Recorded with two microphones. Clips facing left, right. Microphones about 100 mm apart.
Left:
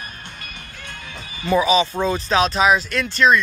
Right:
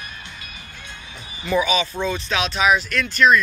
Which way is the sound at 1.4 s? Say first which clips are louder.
Left 3 dB; 30° left (ahead or behind).